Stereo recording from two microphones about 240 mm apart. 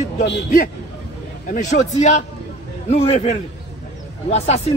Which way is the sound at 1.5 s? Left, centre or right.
Left.